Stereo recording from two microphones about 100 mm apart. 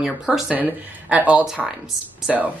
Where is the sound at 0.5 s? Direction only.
15° right (ahead or behind).